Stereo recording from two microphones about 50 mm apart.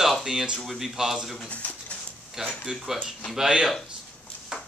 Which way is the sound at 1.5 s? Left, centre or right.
Left.